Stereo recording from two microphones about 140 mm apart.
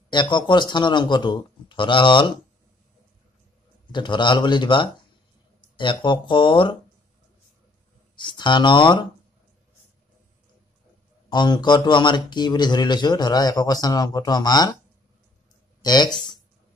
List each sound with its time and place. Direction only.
0.1 s speech: 35° left (ahead or behind)
3.9 s speech: 35° left (ahead or behind)
8.2 s speech: 35° left (ahead or behind)
11.2 s speech: 30° left (ahead or behind)
15.8 s speech: 30° left (ahead or behind)